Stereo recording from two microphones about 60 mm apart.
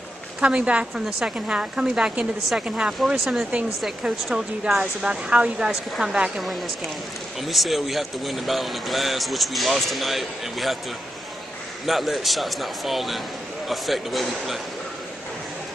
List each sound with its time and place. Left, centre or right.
0.4 s a woman's voice: centre
5.7 s speech: centre
6.1 s speech: centre
7.3 s speech: centre
11.8 s speech: centre